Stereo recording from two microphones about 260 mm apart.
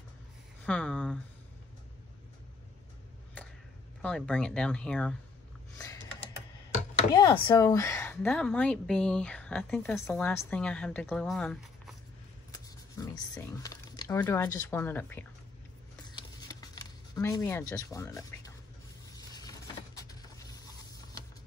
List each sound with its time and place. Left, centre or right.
0.7 s a woman's voice: centre
4.0 s a woman's voice: centre
7.2 s a woman's voice: centre
12.4 s speech: centre
16.1 s a sound: centre
20.0 s vehicle: centre